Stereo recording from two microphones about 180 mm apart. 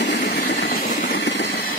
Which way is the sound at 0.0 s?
65° left (ahead or behind).